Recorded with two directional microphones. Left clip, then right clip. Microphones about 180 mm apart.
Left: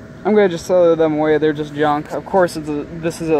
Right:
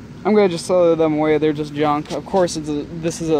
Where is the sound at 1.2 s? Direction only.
35° right (ahead or behind).